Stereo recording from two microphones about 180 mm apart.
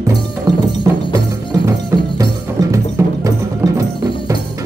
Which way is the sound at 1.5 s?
20° right (ahead or behind).